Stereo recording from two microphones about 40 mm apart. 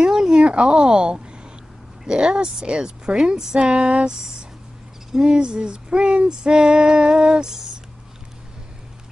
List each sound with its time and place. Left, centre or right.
0.0 s a sound: centre
0.4 s a woman's voice: right
2.0 s female singing: right
3.3 s speech: centre
3.6 s female singing: right
5.2 s female singing: right